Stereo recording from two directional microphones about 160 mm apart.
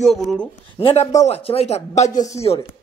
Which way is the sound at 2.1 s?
20° left (ahead or behind).